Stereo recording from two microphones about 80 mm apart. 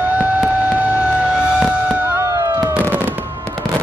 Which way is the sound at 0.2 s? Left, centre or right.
Centre.